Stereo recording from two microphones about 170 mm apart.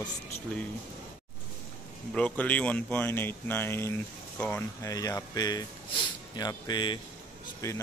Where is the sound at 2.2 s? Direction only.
10° left (ahead or behind); by 7.0 s 25° left (ahead or behind).